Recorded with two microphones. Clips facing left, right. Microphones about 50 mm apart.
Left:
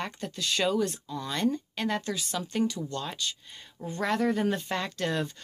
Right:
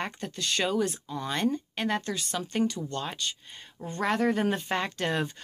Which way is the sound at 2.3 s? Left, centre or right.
Centre.